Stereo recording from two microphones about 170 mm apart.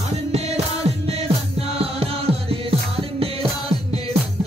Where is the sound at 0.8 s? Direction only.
35° right (ahead or behind).